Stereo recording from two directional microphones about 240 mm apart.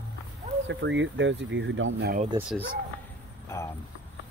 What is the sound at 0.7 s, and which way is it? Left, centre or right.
Speech, right.